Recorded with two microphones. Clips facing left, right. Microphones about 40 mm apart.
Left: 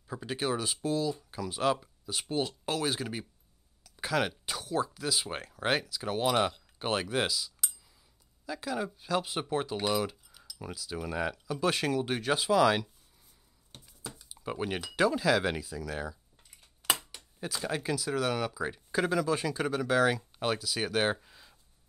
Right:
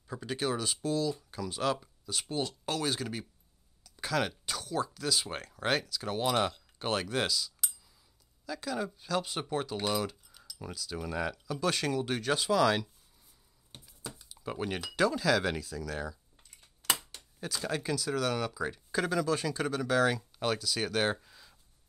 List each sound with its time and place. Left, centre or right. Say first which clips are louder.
0.0 s speech: even; centre
3.8 s a sound: left 1 dB; centre
4.5 s speech: left 2 dB; centre
14.3 s speech: left 1 dB; centre